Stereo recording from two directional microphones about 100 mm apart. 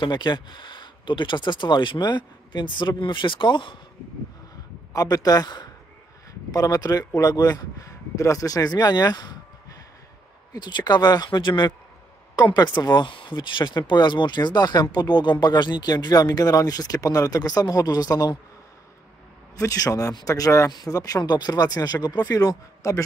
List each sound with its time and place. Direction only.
0.0 s speech: 50° left (ahead or behind)
4.9 s speech: 40° left (ahead or behind)
19.5 s speech: 35° left (ahead or behind)